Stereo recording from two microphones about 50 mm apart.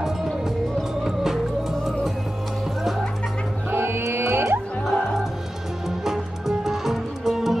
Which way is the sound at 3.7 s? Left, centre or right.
Right.